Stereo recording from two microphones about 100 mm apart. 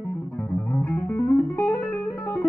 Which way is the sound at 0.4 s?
15° left (ahead or behind).